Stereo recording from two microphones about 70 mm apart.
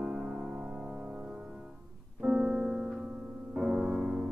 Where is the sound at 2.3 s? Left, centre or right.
Centre.